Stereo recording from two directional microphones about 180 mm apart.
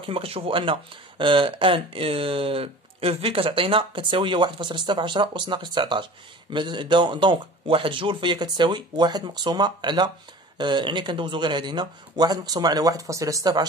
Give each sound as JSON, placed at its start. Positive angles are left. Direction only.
{"t": 0.0, "sound": "speech", "side_deg": -30}